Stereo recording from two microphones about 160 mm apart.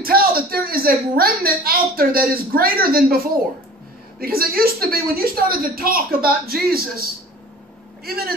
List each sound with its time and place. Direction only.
0.0 s a woman's voice: 70° right (ahead or behind)
4.2 s a woman's voice: 70° right (ahead or behind)